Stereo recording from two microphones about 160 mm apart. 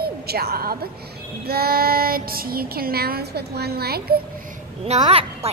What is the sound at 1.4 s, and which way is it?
Child singing, 75° right (ahead or behind).